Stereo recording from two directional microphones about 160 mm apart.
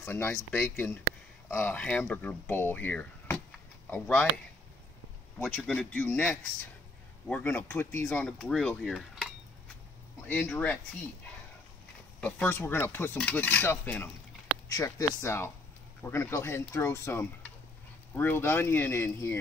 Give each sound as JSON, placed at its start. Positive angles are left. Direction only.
{"t": 0.0, "sound": "speech", "side_deg": 15}
{"t": 5.4, "sound": "speech", "side_deg": 5}
{"t": 12.2, "sound": "speech", "side_deg": 10}